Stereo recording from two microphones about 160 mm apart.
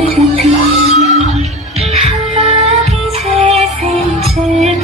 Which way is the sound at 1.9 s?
40° right (ahead or behind).